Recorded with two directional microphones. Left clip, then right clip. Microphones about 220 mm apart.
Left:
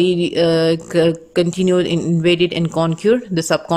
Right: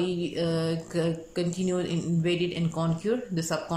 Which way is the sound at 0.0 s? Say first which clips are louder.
Left 14 dB; 40° left (ahead or behind).